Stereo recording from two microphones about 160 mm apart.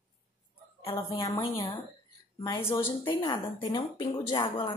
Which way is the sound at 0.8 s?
35° left (ahead or behind).